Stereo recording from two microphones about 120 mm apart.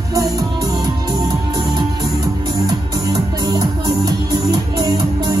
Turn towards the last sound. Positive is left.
turn(degrees=-30)  # may be behind; listen again after turning